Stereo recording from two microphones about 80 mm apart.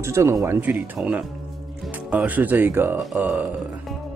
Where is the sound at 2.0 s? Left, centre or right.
Centre.